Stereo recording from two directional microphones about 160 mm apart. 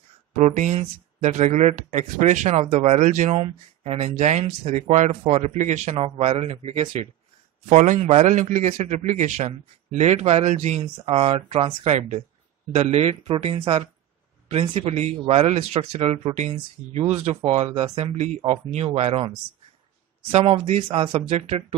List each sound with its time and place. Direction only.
0.3 s speech: 50° right (ahead or behind)
7.7 s a man's voice: 50° right (ahead or behind)